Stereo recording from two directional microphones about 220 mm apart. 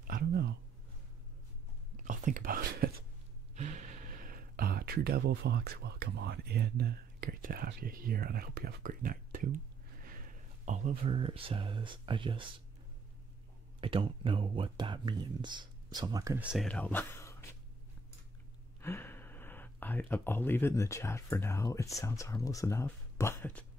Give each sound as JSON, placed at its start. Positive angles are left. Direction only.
{"t": 0.0, "sound": "a sound", "side_deg": -45}
{"t": 2.0, "sound": "speech", "side_deg": -35}
{"t": 13.7, "sound": "speech", "side_deg": -25}
{"t": 16.6, "sound": "speech", "side_deg": 5}
{"t": 18.8, "sound": "speech", "side_deg": 10}